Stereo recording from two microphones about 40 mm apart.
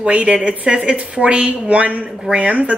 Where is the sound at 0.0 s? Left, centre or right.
Right.